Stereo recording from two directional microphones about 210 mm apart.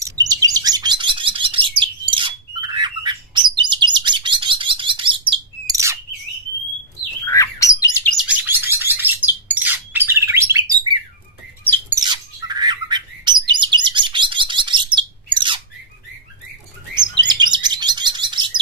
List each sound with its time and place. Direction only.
0.0 s chirp: 15° right (ahead or behind)
7.2 s bird: 15° left (ahead or behind)
8.1 s bird: 5° right (ahead or behind); by 15.6 s 25° right (ahead or behind)
16.9 s chirp: 20° right (ahead or behind)